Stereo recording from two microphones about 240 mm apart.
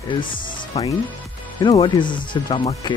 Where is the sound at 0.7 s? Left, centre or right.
Centre.